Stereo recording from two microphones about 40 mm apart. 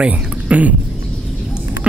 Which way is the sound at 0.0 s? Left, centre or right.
Right.